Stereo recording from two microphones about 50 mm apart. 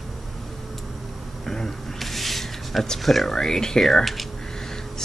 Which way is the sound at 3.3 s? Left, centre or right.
Centre.